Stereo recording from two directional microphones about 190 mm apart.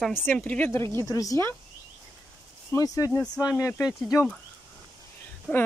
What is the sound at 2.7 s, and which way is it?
Speech, 20° left (ahead or behind).